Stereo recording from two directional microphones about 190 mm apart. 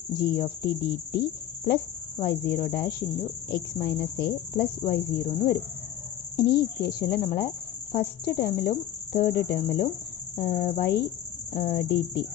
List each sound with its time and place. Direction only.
0.1 s speech: 55° left (ahead or behind); by 12.2 s 70° left (ahead or behind)